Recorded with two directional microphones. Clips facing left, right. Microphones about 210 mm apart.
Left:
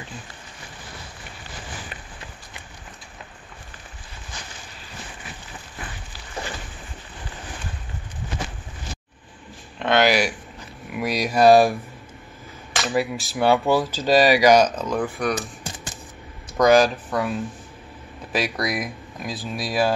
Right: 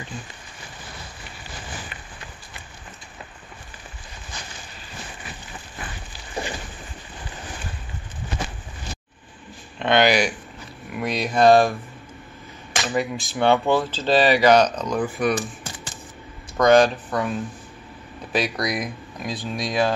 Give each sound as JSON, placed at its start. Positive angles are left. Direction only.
{"t": 6.3, "sound": "a sound", "side_deg": -15}
{"t": 9.8, "sound": "speech", "side_deg": 0}
{"t": 12.8, "sound": "speech", "side_deg": 0}
{"t": 16.5, "sound": "speech", "side_deg": 5}